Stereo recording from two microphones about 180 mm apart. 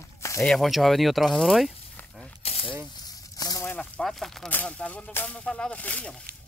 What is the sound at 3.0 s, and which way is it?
Speech, 20° left (ahead or behind).